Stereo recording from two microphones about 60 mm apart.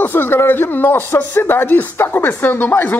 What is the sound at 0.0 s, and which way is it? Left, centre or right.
A man's voice, left.